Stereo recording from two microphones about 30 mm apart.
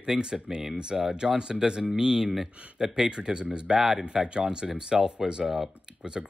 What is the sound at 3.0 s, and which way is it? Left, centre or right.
Speech, right.